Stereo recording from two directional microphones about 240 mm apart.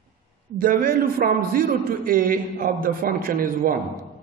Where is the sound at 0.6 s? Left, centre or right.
Right.